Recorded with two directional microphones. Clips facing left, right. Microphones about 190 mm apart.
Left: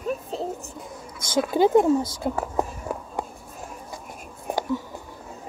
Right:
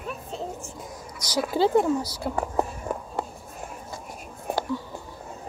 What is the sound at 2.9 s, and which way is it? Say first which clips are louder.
Walk: even; 5° left (ahead or behind).